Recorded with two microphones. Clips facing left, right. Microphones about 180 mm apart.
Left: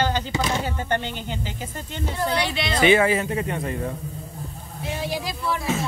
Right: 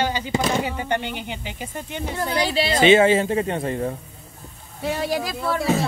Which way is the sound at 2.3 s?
35° right (ahead or behind).